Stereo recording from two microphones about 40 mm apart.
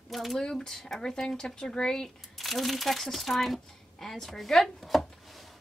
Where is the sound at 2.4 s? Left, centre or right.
Centre.